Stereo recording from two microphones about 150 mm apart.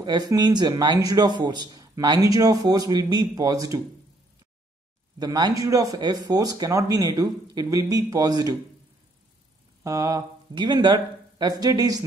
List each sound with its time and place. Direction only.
0.0 s speech: 30° right (ahead or behind)
5.2 s speech: 25° right (ahead or behind)
9.8 s speech: 20° right (ahead or behind)